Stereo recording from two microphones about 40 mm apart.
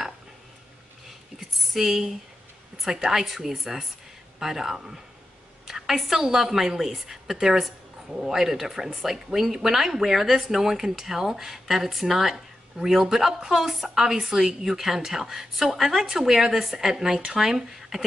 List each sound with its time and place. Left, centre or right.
1.6 s a woman's voice: centre